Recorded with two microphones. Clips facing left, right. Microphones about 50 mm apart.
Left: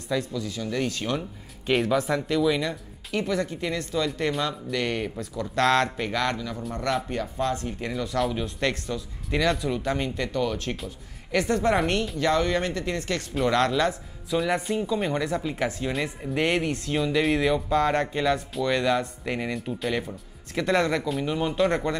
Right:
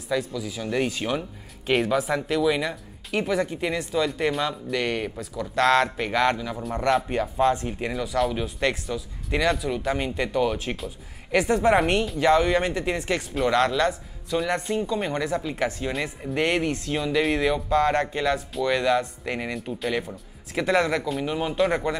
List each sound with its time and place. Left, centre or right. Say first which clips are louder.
0.1 s speech: right 1 dB; centre
13.3 s speech: right 1 dB; centre